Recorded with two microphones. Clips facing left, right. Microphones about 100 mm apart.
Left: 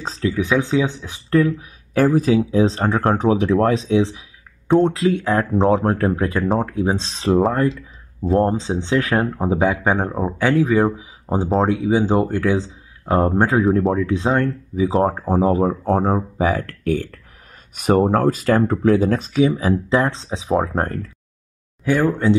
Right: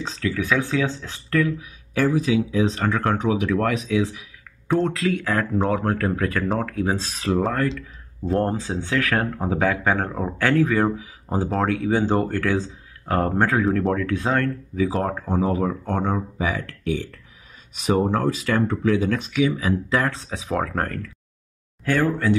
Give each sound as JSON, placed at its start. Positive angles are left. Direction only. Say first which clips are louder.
{"t": 0.2, "sound": "speech", "louder": "left 4 dB", "side_deg": 20}
{"t": 1.3, "sound": "speech", "louder": "left 5 dB", "side_deg": 30}
{"t": 21.8, "sound": "speech", "louder": "left 4 dB", "side_deg": 15}